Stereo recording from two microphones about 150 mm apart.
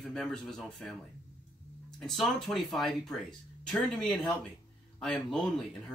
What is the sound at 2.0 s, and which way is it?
Speech, centre (ahead or behind).